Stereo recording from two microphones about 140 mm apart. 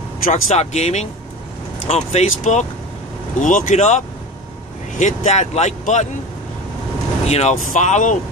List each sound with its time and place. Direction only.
0.2 s speech: 55° left (ahead or behind)
3.3 s speech: 65° left (ahead or behind)
7.2 s speech: 50° left (ahead or behind)